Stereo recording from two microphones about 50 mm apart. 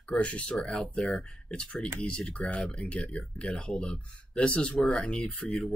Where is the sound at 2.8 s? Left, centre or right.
Left; by 5.7 s centre.